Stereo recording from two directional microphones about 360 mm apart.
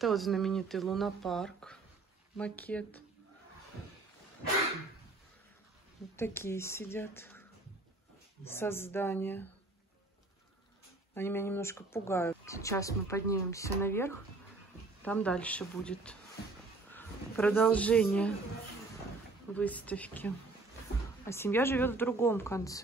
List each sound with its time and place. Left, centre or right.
0.0 s speech: centre
6.1 s speech: centre
8.5 s speech: centre
11.1 s speech: centre
19.5 s speech: centre